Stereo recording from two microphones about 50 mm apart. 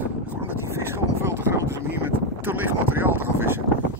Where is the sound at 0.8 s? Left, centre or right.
Right.